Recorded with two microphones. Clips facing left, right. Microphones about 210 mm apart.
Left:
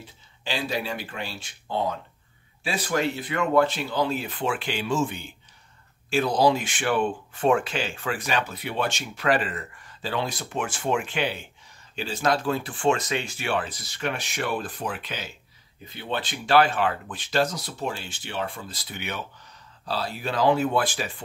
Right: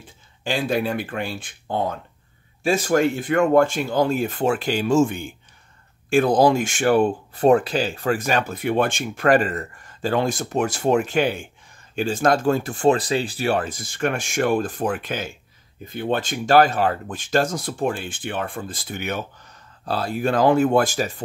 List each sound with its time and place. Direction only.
0.0 s speech: 50° right (ahead or behind)